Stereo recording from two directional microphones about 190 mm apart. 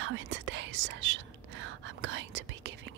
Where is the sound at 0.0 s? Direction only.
80° right.